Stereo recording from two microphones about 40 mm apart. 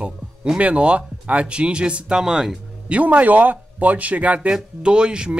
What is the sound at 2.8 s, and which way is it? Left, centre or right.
Speech, right.